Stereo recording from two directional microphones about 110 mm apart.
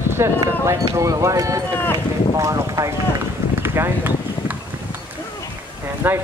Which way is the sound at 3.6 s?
20° right (ahead or behind).